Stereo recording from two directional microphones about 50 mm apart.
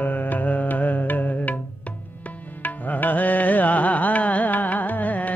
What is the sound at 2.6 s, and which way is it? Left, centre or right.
Carnatic music, left.